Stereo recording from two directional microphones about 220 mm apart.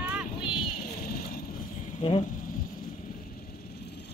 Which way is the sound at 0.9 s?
45° left (ahead or behind).